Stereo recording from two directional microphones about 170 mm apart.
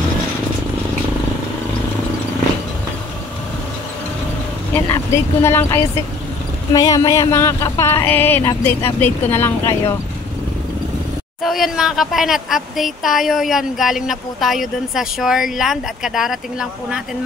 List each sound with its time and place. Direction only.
4.7 s speech: 15° left (ahead or behind)
11.4 s speech: centre (ahead or behind)